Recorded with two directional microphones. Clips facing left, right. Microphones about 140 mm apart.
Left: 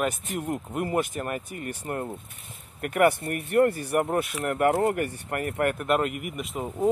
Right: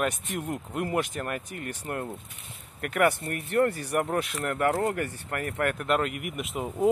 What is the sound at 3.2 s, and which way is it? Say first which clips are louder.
Speech: left 3 dB; 60° left (ahead or behind).